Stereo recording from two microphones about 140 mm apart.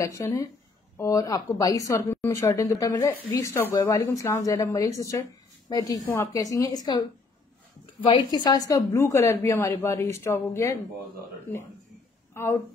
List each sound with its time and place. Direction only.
0.0 s speech: 25° left (ahead or behind)
12.4 s speech: 20° left (ahead or behind)